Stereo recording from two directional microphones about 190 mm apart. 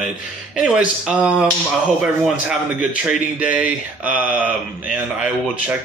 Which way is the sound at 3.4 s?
5° right (ahead or behind).